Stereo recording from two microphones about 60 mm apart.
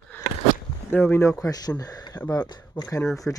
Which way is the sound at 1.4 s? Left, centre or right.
Left.